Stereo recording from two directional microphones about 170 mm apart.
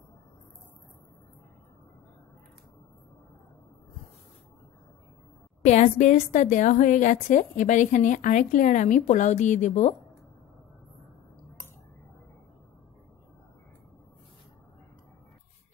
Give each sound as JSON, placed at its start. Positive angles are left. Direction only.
{"t": 5.6, "sound": "a woman's voice", "side_deg": 45}